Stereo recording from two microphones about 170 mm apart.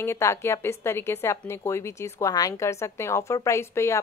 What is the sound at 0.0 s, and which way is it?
A woman's voice, 15° left (ahead or behind).